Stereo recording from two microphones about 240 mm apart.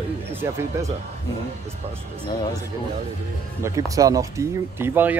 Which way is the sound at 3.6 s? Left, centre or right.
Centre.